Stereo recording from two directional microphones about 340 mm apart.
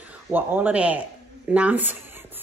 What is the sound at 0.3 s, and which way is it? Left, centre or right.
Speech, centre.